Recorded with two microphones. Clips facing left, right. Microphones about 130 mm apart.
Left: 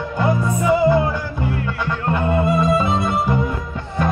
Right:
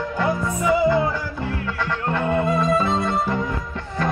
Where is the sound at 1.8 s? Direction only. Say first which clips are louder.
Left 1 dB; 10° left (ahead or behind).